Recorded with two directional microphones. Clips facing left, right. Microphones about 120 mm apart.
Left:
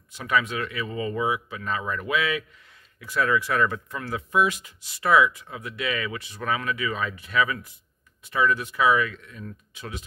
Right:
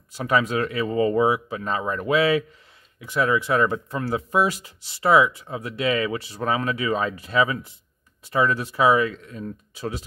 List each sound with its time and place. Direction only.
0.1 s speech: 35° right (ahead or behind)